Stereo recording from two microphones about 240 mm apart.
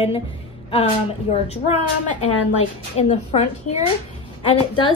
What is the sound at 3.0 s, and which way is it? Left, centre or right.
A woman's voice, left.